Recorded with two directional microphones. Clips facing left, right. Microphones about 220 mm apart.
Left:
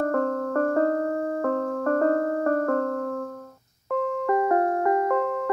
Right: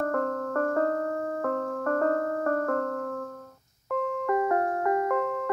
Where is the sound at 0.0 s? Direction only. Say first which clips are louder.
Left 4 dB; 30° left (ahead or behind).